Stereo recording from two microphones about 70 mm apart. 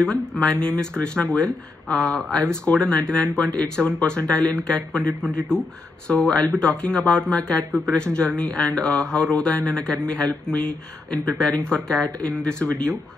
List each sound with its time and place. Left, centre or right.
0.0 s speech: centre